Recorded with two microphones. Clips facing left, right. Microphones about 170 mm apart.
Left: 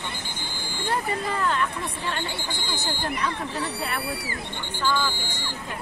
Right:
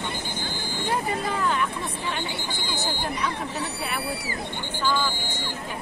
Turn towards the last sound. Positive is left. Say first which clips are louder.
# even
turn(degrees=-15)  # may be behind; listen again after turning